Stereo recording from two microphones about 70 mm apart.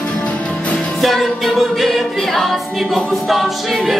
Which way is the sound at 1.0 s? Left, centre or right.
Centre.